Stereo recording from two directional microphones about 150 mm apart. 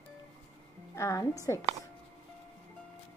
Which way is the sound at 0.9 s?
20° left (ahead or behind).